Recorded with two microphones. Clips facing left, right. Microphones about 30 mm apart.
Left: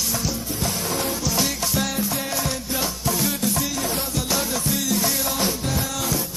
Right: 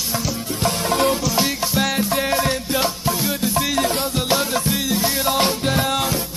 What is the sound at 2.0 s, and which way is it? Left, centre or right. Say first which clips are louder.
Music: right 6 dB; right.